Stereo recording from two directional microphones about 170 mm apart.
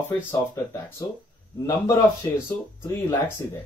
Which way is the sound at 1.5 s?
20° left (ahead or behind).